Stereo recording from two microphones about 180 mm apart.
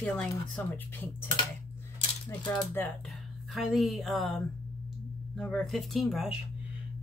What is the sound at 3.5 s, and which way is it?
Speech, centre (ahead or behind).